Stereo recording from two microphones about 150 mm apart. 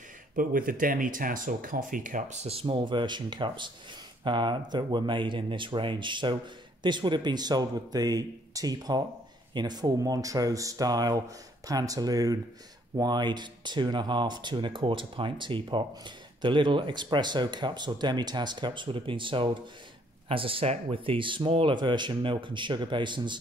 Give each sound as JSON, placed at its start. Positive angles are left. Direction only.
{"t": 0.4, "sound": "speech", "side_deg": -70}